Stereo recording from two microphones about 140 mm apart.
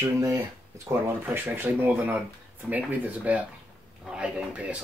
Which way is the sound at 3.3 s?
10° right (ahead or behind).